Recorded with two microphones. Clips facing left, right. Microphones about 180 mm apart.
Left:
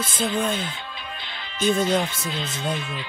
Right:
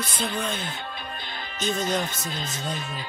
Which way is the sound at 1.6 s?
55° left (ahead or behind).